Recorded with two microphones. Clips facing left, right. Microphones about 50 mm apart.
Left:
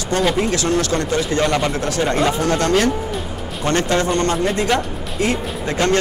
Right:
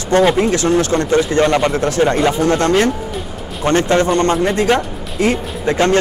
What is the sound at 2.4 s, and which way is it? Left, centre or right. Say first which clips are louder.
Speech: right 3 dB; right.